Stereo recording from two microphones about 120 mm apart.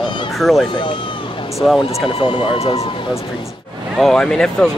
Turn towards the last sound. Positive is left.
turn(degrees=5)  # may be behind; listen again after turning